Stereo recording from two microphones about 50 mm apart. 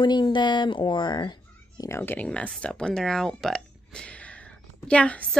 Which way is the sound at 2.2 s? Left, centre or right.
Left.